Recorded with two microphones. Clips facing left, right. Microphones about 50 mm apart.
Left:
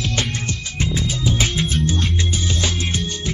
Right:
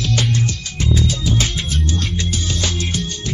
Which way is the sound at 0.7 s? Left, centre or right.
Left.